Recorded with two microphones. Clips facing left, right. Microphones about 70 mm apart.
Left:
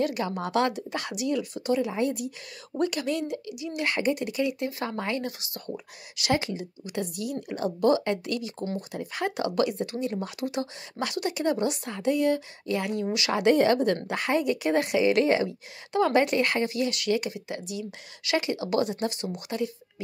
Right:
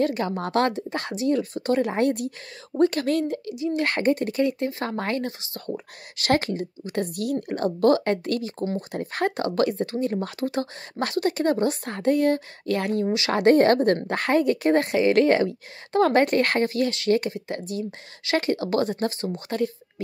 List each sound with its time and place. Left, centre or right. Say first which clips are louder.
0.0 s a woman's voice: right 3 dB; right
2.8 s a woman's voice: right 6 dB; right
4.8 s a woman's voice: right 2 dB; right
5.4 s a woman's voice: right 4 dB; right